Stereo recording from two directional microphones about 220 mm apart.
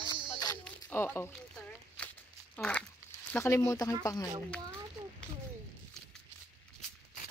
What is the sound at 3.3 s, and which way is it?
Speech, 15° left (ahead or behind).